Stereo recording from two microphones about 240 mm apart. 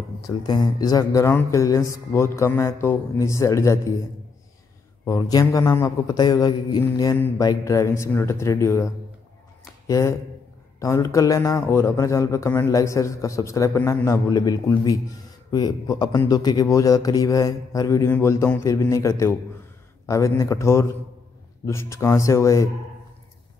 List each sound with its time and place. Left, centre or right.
0.3 s a man's voice: centre
5.0 s a man's voice: centre